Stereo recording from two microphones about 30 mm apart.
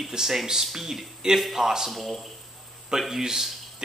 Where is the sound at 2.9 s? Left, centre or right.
Centre.